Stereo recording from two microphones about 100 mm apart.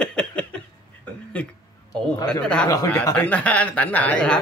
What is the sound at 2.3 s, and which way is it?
A man's voice, 10° left (ahead or behind).